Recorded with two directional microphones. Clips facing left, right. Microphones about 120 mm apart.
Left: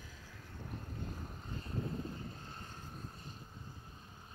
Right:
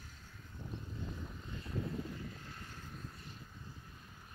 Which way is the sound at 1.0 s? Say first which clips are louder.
Even; 40° left (ahead or behind).